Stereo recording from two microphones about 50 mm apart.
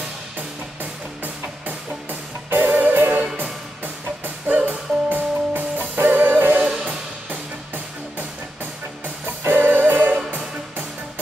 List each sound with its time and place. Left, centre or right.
1.2 s music: right
4.5 s music: right
6.6 s music: right
7.2 s music: right